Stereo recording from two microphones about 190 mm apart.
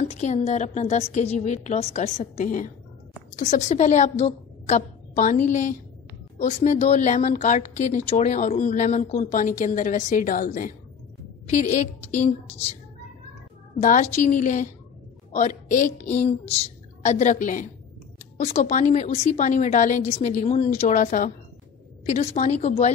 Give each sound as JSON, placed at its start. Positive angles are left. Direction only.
{"t": 0.0, "sound": "a woman's voice", "side_deg": 35}
{"t": 13.7, "sound": "a woman's voice", "side_deg": 40}